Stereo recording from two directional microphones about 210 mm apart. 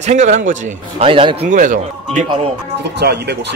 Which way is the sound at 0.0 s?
35° right (ahead or behind).